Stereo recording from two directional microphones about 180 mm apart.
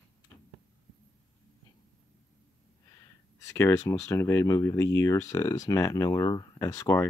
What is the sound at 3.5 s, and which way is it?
Speech, 15° left (ahead or behind).